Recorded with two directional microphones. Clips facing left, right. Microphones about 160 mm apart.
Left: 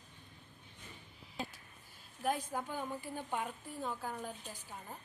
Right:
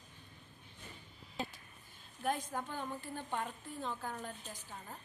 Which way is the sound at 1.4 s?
Centre (ahead or behind).